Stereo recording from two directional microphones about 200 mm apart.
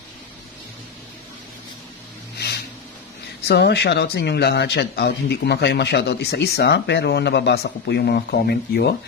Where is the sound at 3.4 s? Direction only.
55° left (ahead or behind).